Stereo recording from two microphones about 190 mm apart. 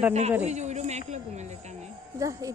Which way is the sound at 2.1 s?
15° right (ahead or behind).